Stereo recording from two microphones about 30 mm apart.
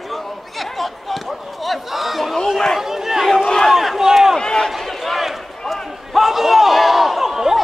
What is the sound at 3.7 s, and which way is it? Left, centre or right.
Battle cry, centre.